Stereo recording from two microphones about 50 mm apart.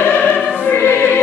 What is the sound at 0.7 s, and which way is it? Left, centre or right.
Music, left.